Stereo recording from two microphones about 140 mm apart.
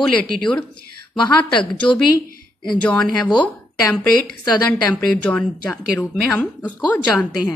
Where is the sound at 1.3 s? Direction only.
35° left (ahead or behind).